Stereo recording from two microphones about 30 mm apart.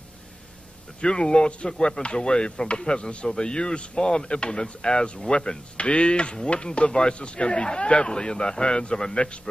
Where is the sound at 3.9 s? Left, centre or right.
Left.